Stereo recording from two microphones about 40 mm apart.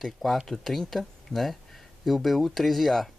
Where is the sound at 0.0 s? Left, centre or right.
Centre.